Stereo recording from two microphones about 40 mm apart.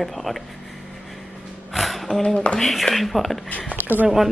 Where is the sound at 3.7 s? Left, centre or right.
Right.